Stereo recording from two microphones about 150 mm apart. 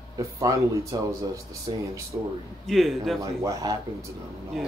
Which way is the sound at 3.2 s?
20° right (ahead or behind).